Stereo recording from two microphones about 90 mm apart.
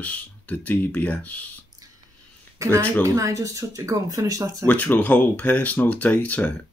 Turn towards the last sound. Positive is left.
turn(degrees=20)  # may be behind; listen again after turning